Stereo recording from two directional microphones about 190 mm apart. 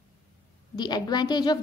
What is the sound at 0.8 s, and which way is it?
Speech, 20° left (ahead or behind).